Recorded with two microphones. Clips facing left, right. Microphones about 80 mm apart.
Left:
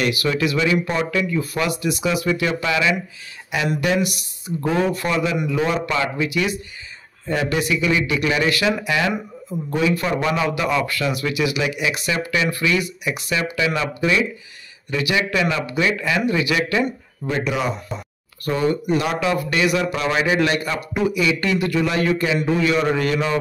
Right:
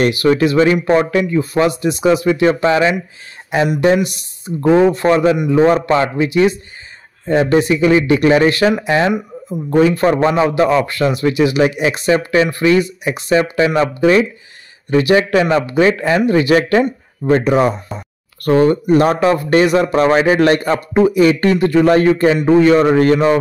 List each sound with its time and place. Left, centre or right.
0.0 s a man's voice: right